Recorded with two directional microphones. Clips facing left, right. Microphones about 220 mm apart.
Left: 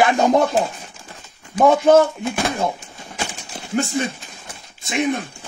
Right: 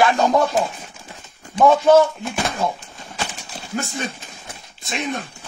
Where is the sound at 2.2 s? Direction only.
Centre (ahead or behind).